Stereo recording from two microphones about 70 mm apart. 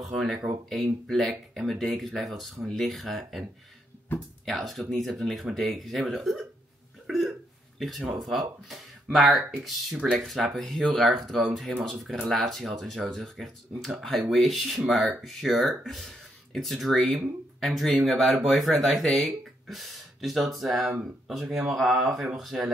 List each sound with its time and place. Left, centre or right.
0.0 s speech: centre
4.1 s speech: left
4.5 s speech: centre
7.1 s hiccup: centre
8.3 s speech: centre